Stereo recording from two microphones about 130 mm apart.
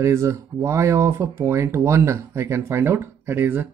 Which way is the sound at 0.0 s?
20° right (ahead or behind).